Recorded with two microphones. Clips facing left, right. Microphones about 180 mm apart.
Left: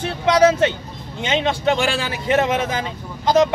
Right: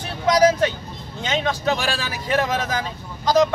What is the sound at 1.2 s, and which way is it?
Speech, 25° left (ahead or behind).